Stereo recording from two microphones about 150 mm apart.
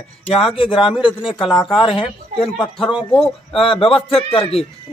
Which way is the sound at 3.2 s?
35° left (ahead or behind).